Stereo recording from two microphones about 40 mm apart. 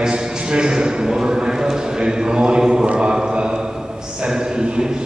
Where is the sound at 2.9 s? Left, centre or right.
Centre.